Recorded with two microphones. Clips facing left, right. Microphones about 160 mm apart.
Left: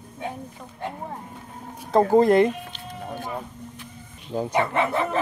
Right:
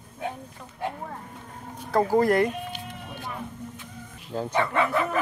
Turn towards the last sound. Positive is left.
turn(degrees=25)  # may be behind; listen again after turning